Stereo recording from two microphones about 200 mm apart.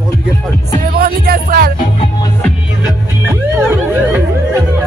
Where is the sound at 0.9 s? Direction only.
45° right (ahead or behind).